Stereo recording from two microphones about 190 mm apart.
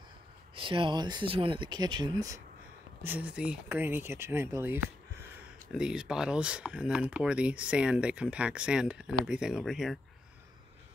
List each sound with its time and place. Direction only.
0.6 s speech: 25° right (ahead or behind)
3.0 s speech: 10° right (ahead or behind)